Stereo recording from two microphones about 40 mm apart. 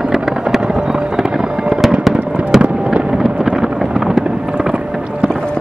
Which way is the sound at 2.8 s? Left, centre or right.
Right.